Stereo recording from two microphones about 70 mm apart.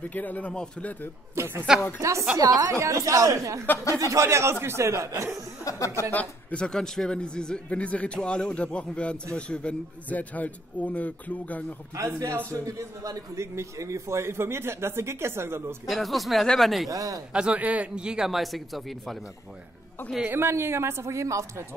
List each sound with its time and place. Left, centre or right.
0.0 s a man's voice: left
1.3 s speech: right
2.0 s speech: right
2.3 s a man's voice: right
2.7 s speech: right
5.7 s speech: left
6.1 s a man's voice: centre
11.9 s a man's voice: right
13.4 s speech: right
15.9 s speech: centre
16.9 s a man's voice: right
17.3 s a man's voice: centre
20.2 s speech: right